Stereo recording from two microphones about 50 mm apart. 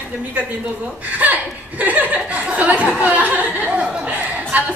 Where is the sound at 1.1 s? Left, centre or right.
Right.